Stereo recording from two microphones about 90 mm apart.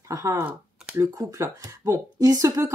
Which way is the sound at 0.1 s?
35° right (ahead or behind).